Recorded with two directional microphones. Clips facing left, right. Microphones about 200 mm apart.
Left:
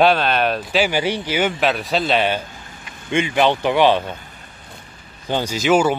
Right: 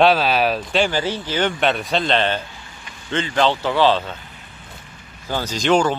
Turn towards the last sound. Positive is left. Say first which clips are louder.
# left 1 dB
turn(degrees=5)  # may be behind; listen again after turning